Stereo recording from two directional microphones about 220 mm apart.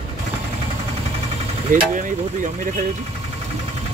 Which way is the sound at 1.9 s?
35° right (ahead or behind).